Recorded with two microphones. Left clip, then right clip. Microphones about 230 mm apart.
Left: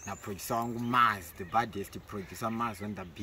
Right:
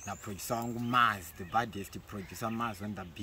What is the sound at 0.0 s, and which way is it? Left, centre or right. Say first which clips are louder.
Speech: left 1 dB; centre.